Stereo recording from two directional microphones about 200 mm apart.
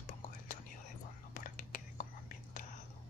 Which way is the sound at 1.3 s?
45° left (ahead or behind).